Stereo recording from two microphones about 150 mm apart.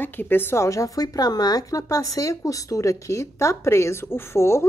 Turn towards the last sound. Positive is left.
turn(degrees=15)  # may be behind; listen again after turning